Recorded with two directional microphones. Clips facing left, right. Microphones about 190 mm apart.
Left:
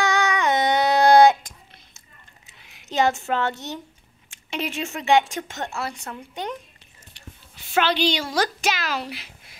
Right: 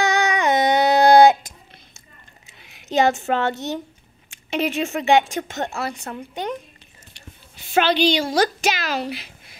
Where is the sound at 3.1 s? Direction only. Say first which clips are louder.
Right 3 dB; 25° right (ahead or behind).